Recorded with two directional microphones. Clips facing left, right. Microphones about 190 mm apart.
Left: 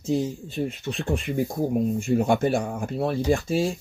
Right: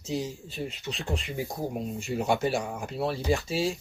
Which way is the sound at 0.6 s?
55° left (ahead or behind).